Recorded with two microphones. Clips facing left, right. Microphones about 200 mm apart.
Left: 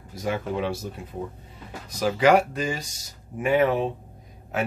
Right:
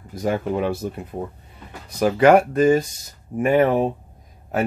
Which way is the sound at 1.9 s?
55° right (ahead or behind).